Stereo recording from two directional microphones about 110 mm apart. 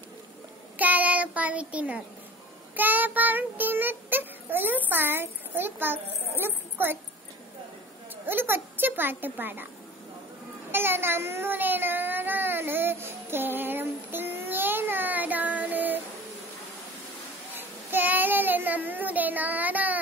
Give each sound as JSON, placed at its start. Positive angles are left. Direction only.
{"t": 0.7, "sound": "child singing", "side_deg": -15}
{"t": 8.3, "sound": "a child's voice", "side_deg": -20}
{"t": 10.7, "sound": "child singing", "side_deg": -20}
{"t": 17.6, "sound": "child singing", "side_deg": -15}